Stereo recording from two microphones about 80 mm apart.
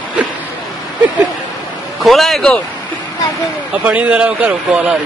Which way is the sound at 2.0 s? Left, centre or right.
Centre.